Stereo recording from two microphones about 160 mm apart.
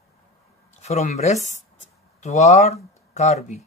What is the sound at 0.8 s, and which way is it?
Speech, 45° left (ahead or behind).